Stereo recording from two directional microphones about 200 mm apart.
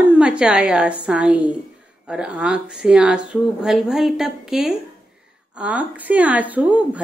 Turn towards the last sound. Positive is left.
turn(degrees=-10)  # may be behind; listen again after turning